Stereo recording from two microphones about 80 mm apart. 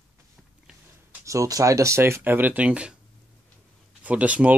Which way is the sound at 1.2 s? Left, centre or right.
Right.